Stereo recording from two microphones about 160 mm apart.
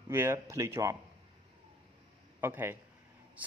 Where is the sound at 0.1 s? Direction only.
15° right (ahead or behind).